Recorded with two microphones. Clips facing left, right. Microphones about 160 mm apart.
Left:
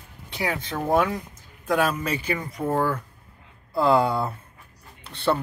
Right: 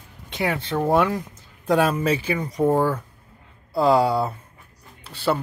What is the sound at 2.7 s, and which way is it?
Speech, 10° right (ahead or behind).